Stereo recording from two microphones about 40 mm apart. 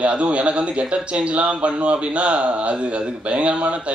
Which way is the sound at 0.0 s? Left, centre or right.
Right.